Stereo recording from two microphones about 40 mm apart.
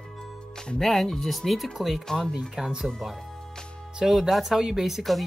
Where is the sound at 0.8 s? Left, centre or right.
Centre.